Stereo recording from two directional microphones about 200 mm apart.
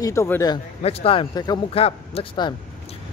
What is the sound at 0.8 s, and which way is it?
A man's voice, 30° left (ahead or behind).